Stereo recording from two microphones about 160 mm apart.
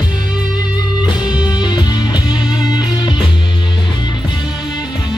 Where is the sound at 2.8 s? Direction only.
30° left (ahead or behind).